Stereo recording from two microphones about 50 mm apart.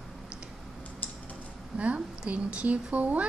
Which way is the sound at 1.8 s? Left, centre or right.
Right.